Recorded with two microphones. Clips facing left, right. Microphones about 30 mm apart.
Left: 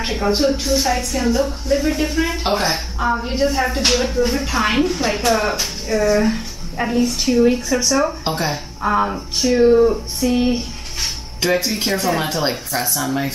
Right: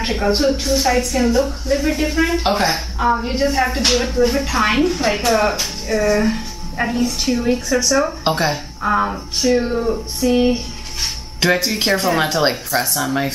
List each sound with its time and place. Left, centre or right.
0.0 s a woman's voice: centre
8.2 s speech: right
8.8 s speech: centre
11.4 s speech: right
12.4 s a woman's voice: right